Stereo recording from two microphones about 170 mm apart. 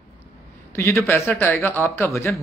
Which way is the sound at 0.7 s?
15° left (ahead or behind).